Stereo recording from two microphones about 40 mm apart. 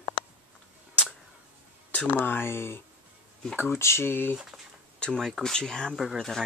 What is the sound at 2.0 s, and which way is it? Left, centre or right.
Speech, left.